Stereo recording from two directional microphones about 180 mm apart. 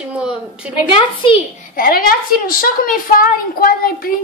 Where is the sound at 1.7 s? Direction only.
55° left (ahead or behind).